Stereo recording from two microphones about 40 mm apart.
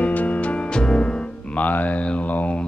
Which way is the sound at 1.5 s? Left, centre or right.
Left.